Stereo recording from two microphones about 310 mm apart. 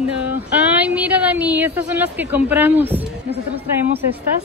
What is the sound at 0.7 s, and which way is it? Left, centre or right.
A woman's voice, centre.